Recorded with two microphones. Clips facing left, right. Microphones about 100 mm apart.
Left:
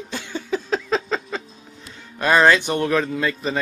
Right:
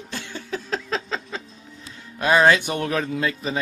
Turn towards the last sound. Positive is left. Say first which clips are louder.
# left 2 dB
turn(degrees=-5)  # may be behind; listen again after turning